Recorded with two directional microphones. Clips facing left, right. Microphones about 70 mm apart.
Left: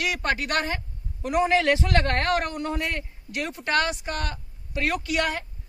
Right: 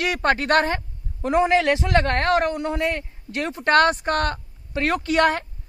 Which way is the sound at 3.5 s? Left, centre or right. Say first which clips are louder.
Right 8 dB; right.